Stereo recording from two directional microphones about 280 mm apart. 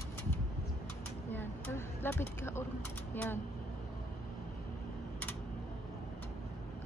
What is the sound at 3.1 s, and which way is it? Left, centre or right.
Speech, centre.